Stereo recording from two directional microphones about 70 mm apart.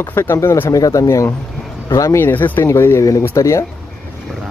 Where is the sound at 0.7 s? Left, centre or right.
Left.